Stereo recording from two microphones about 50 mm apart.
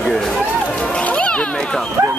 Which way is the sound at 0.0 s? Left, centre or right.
Centre.